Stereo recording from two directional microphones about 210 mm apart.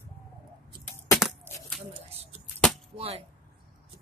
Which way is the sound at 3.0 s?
30° right (ahead or behind).